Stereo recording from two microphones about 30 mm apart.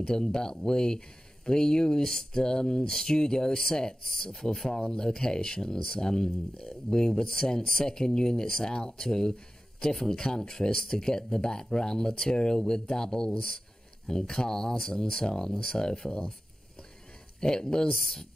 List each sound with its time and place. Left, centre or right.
0.0 s speech: left
17.4 s speech: left